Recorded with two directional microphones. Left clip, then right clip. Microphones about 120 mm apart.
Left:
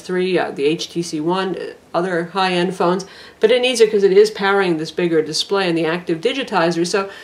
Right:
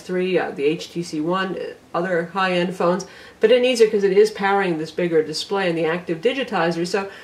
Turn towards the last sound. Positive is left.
turn(degrees=30)  # may be behind; listen again after turning